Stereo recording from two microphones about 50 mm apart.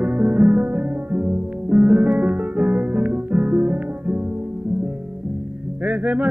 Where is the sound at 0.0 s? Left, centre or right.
Right.